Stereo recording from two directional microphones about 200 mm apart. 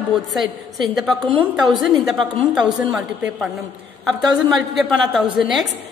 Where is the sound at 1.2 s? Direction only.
20° right (ahead or behind).